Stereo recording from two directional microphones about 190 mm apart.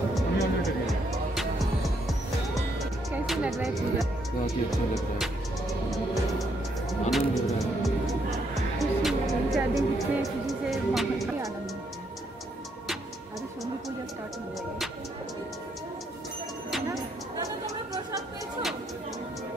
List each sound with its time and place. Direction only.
0.1 s music: centre (ahead or behind)
17.4 s chatter: 20° right (ahead or behind)